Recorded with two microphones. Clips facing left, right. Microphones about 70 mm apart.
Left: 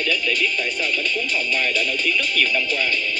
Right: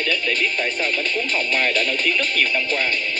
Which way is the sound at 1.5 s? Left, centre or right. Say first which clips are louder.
Right 2 dB; right.